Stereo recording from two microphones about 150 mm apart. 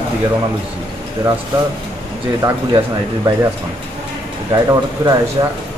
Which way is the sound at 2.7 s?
25° right (ahead or behind).